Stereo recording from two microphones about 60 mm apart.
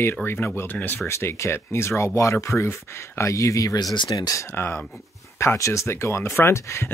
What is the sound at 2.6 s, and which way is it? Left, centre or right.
Speech, left.